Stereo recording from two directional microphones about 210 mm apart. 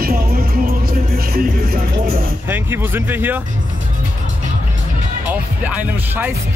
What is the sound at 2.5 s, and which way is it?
Speech, 10° right (ahead or behind).